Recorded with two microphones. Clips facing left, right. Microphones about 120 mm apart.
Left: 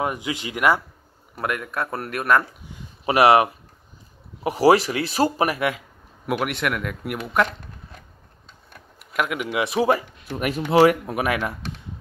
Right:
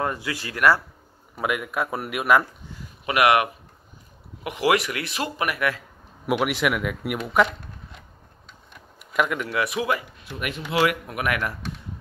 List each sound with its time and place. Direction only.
0.0 s speech: 20° left (ahead or behind)
1.3 s speech: 5° right (ahead or behind)
3.1 s speech: 30° left (ahead or behind)
6.2 s speech: centre (ahead or behind)
9.1 s speech: centre (ahead or behind)
9.4 s speech: 15° left (ahead or behind)
9.7 s speech: 35° left (ahead or behind)